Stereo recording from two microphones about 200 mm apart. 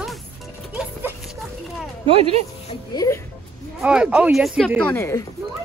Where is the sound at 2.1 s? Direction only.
30° right (ahead or behind).